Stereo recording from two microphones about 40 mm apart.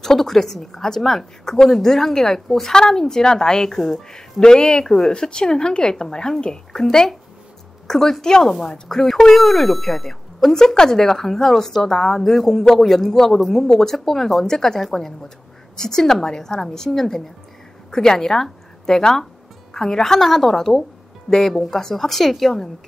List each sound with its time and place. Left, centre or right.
0.0 s a woman's voice: centre